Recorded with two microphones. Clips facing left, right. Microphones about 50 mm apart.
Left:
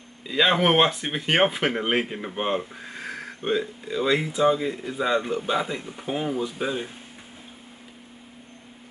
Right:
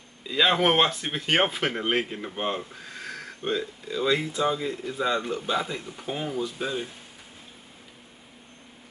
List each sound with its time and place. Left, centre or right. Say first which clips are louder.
0.3 s speech: left 2 dB; centre